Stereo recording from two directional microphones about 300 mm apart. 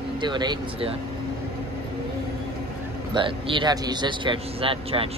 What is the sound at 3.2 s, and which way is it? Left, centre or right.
Speech, centre.